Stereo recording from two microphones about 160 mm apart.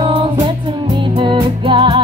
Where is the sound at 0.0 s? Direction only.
35° right (ahead or behind).